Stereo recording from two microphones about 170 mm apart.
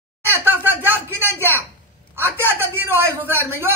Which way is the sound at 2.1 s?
10° right (ahead or behind).